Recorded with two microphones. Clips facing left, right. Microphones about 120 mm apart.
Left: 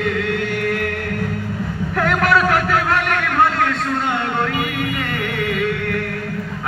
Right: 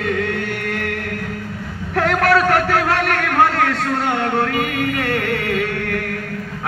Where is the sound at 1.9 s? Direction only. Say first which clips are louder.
Right 2 dB; 40° right (ahead or behind).